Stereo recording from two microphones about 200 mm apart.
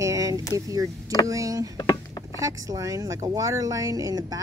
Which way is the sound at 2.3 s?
15° right (ahead or behind).